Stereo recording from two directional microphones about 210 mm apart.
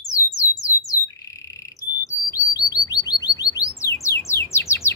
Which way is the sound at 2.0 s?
15° left (ahead or behind).